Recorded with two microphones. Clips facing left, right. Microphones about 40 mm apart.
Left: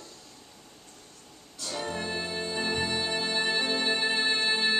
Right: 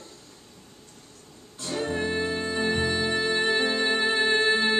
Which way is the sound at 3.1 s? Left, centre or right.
Right.